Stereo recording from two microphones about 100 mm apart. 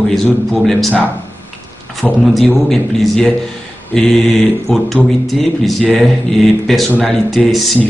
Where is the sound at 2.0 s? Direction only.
5° left (ahead or behind).